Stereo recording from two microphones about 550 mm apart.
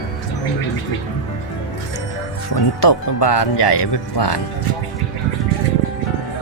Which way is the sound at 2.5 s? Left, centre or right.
Left.